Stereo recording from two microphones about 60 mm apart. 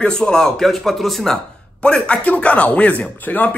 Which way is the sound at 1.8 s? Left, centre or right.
Centre.